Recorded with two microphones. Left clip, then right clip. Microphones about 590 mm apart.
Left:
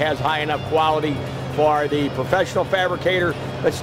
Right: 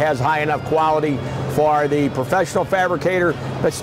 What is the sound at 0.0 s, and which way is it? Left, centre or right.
Speech, right.